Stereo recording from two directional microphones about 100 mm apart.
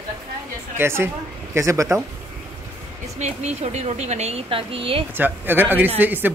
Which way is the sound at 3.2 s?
90° right.